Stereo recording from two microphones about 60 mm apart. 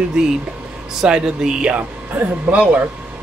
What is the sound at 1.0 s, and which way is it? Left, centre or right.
Speech, centre.